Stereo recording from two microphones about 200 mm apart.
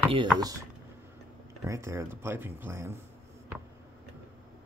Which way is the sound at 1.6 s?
15° right (ahead or behind).